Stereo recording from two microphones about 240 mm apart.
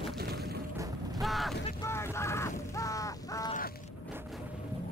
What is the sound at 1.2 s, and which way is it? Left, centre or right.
Boat, centre.